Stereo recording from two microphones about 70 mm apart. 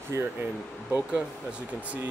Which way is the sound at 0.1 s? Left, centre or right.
Right.